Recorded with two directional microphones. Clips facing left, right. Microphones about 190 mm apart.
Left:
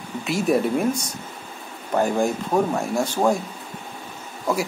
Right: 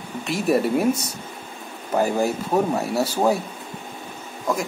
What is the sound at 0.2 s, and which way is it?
Speech, centre (ahead or behind).